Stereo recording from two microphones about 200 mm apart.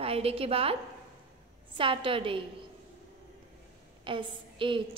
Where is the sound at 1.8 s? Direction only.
25° right (ahead or behind).